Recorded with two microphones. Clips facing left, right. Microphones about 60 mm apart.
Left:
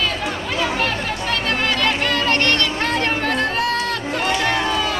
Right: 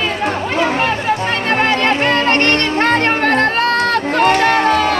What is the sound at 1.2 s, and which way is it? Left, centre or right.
Music, right.